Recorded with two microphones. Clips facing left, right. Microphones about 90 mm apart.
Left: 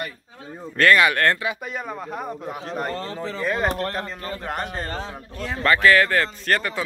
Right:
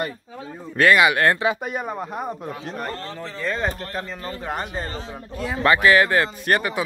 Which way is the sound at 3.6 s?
65° left (ahead or behind).